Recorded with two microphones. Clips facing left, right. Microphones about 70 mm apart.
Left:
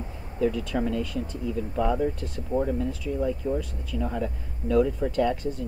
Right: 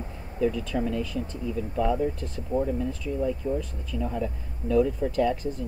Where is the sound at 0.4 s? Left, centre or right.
Centre.